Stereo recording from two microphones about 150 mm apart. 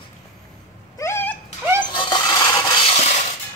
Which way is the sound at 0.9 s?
15° left (ahead or behind).